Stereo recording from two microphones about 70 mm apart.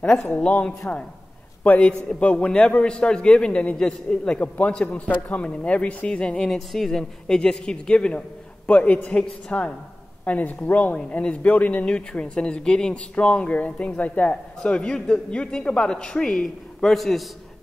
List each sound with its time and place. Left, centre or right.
0.5 s a woman's voice: left; by 17.2 s centre